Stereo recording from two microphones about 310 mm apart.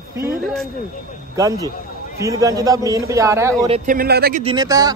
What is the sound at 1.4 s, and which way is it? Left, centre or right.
Speech, centre.